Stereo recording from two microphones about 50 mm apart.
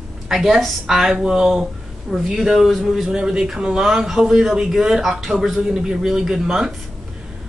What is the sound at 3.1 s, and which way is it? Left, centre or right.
Speech, centre.